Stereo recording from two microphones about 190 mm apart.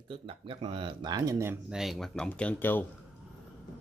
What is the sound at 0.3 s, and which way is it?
Speech, 30° right (ahead or behind).